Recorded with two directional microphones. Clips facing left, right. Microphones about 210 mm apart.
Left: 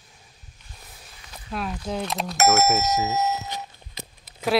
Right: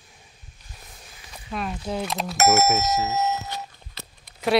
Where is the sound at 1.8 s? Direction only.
Centre (ahead or behind).